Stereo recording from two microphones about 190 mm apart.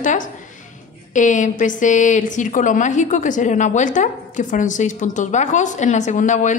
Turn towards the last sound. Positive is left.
turn(degrees=40)  # may be behind; listen again after turning